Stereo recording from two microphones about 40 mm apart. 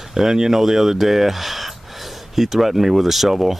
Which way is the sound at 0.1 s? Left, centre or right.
Centre.